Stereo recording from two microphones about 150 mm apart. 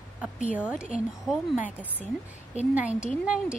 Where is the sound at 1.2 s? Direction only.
Centre (ahead or behind).